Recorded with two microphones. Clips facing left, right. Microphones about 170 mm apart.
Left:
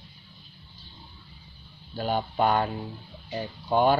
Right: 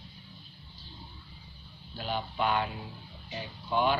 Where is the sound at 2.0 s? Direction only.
45° left (ahead or behind).